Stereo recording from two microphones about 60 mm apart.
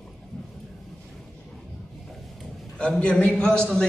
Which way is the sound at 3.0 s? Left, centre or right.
Centre.